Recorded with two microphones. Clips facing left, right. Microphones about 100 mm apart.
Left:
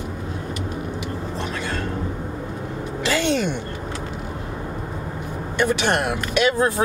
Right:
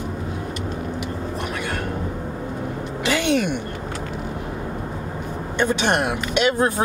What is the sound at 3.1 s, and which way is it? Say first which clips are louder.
Speech: even; 15° right (ahead or behind).